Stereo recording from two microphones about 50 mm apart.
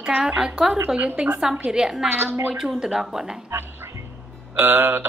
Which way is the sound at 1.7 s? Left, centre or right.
Centre.